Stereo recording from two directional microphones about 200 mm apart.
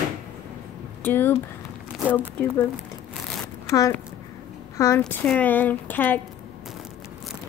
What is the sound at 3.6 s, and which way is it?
Speech, 15° left (ahead or behind).